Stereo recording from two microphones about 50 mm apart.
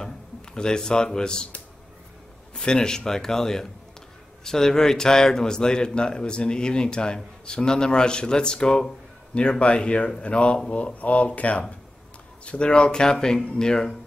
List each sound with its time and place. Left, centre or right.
0.6 s speech: centre